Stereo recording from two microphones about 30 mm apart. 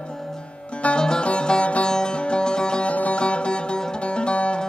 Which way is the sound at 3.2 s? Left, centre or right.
Left.